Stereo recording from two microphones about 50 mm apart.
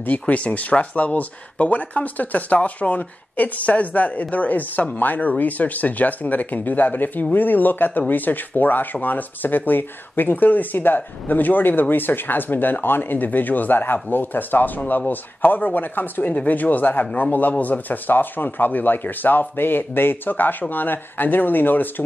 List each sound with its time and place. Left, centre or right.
0.0 s speech: left